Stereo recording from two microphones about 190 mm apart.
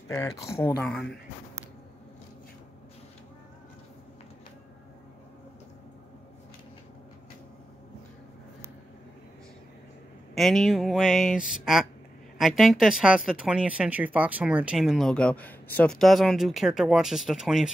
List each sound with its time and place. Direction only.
0.1 s speech: 15° left (ahead or behind)
10.3 s speech: centre (ahead or behind)